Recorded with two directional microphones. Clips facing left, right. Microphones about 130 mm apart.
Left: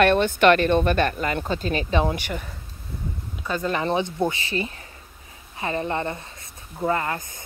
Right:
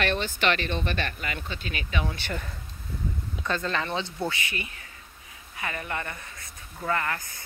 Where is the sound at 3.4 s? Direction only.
10° left (ahead or behind).